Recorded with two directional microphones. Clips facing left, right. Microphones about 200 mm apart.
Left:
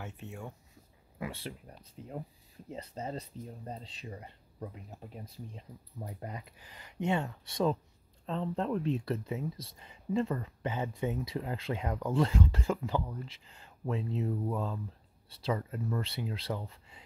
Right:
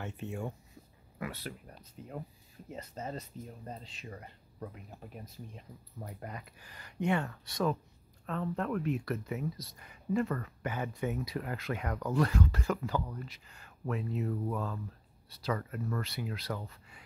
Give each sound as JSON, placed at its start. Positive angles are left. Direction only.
{"t": 0.0, "sound": "speech", "side_deg": 0}
{"t": 1.1, "sound": "speech", "side_deg": 25}